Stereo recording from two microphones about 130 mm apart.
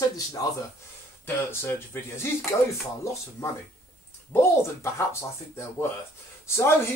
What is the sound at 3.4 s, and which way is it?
Speech, 25° left (ahead or behind).